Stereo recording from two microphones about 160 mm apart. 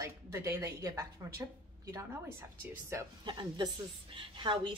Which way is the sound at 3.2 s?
30° right (ahead or behind).